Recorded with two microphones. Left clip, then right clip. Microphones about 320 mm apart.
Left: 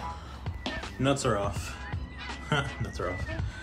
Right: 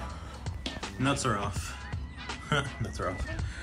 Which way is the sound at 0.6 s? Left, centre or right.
Centre.